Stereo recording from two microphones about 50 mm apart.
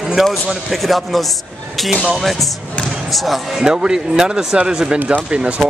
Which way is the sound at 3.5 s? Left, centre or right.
Centre.